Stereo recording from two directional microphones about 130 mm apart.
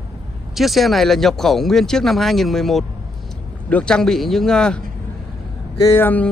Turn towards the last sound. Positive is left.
turn(degrees=15)  # may be behind; listen again after turning